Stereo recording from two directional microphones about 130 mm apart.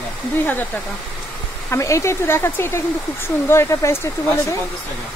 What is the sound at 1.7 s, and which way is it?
Speech, 25° left (ahead or behind).